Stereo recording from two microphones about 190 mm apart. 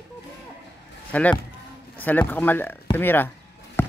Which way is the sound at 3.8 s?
10° left (ahead or behind).